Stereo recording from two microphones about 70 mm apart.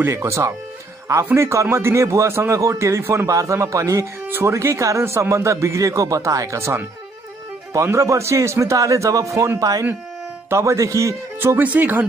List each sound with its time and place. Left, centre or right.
0.0 s a man's voice: right
3.3 s speech: right
10.5 s speech: right
11.3 s a man's voice: right